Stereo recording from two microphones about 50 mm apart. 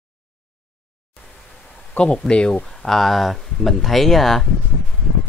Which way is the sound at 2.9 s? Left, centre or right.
Centre.